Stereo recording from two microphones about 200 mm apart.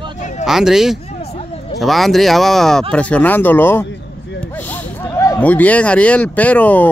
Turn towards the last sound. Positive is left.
turn(degrees=5)  # may be behind; listen again after turning